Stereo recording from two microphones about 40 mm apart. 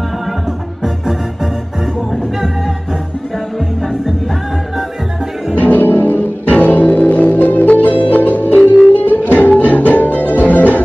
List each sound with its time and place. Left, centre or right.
0.8 s music: centre
5.6 s music: left
6.5 s music: left